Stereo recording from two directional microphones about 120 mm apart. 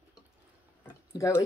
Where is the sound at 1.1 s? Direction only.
25° left (ahead or behind).